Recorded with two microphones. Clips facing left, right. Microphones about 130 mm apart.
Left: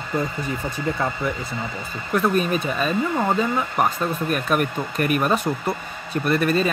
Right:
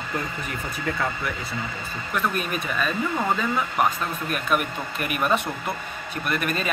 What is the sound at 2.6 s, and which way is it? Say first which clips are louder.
Speech: left 3 dB; 35° left (ahead or behind).